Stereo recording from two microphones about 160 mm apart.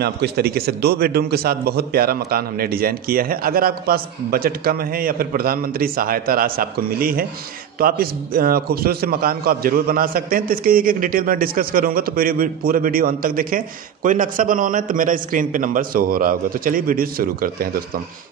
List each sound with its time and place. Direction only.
0.0 s a man's voice: 80° right; by 17.8 s 65° right (ahead or behind)